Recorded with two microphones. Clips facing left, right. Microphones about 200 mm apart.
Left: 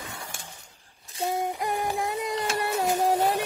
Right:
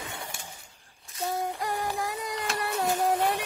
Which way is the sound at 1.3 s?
15° left (ahead or behind).